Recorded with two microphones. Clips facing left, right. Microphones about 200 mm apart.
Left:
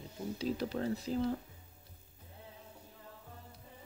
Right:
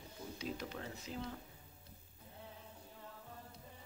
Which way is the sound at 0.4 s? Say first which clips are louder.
Left 9 dB; 35° left (ahead or behind).